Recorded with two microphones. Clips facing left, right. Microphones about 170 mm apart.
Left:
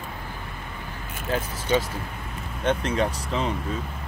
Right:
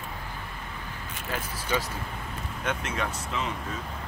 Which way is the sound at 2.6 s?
35° left (ahead or behind).